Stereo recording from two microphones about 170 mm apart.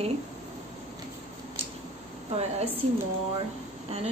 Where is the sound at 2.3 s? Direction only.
35° right (ahead or behind).